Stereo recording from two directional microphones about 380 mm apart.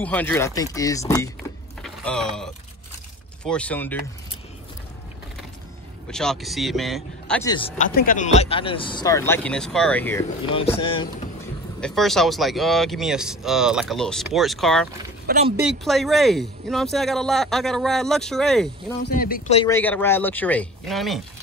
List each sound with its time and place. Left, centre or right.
0.0 s speech: centre
1.8 s vehicle: centre
3.4 s speech: centre
6.0 s speech: centre
11.8 s speech: centre
15.2 s speech: right
15.8 s speech: centre
19.1 s speech: left
19.6 s speech: centre